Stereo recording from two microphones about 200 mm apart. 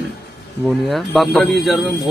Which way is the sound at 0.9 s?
Centre (ahead or behind).